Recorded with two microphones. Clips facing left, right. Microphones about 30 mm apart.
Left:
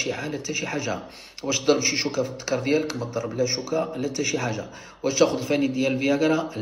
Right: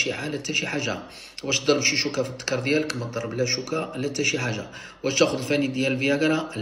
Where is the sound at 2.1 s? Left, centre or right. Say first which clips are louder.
Left 1 dB; right.